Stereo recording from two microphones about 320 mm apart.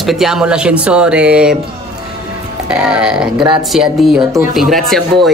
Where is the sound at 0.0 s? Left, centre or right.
Centre.